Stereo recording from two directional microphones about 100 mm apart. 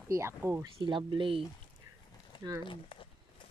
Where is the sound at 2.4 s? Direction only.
35° right (ahead or behind).